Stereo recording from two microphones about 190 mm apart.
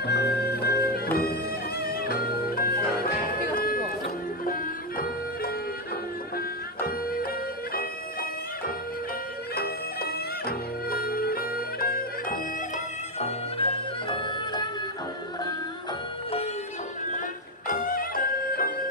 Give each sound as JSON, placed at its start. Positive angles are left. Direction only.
{"t": 0.0, "sound": "music", "side_deg": 60}
{"t": 13.2, "sound": "music", "side_deg": 30}
{"t": 17.6, "sound": "music", "side_deg": 45}